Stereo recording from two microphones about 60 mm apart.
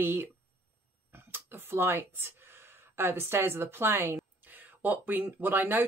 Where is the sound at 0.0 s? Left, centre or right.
Right.